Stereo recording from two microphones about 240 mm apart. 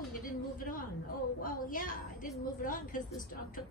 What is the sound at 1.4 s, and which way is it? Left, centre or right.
A woman's voice, left.